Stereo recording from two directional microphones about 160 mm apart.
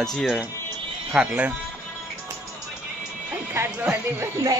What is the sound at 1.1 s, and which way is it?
Speech, 10° right (ahead or behind).